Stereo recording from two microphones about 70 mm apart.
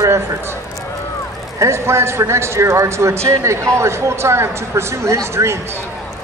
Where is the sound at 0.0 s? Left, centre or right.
Right.